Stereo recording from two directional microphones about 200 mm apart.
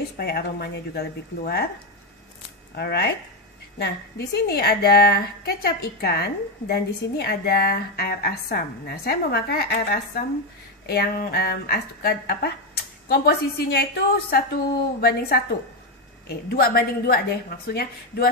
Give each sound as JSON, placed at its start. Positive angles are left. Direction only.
{"t": 0.2, "sound": "a woman's voice", "side_deg": 55}
{"t": 2.7, "sound": "a woman's voice", "side_deg": 55}